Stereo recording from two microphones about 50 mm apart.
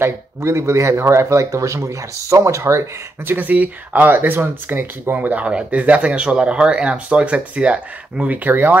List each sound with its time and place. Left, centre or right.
0.0 s speech: right
3.3 s speech: right
8.5 s speech: right